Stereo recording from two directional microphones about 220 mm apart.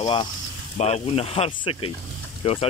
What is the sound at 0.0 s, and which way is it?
Speech, 20° left (ahead or behind).